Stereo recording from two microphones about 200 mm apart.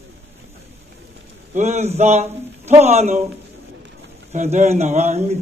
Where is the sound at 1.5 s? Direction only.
35° right (ahead or behind).